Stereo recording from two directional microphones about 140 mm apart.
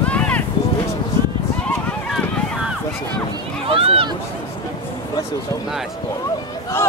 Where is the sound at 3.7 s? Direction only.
45° right (ahead or behind).